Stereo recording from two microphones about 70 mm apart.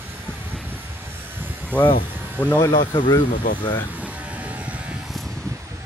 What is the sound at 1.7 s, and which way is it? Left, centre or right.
Speech, right.